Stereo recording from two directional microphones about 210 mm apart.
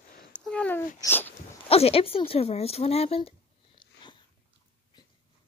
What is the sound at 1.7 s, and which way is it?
Speech, 30° left (ahead or behind).